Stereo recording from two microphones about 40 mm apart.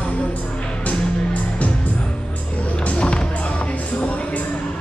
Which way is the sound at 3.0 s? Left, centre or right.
Left.